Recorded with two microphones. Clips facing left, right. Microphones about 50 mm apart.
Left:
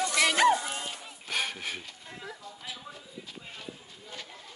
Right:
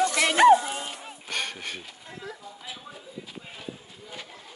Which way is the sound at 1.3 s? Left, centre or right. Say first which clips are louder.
Even; centre.